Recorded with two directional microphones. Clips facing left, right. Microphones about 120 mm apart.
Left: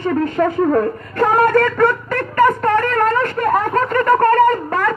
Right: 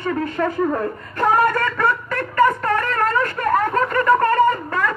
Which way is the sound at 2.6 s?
45° left (ahead or behind).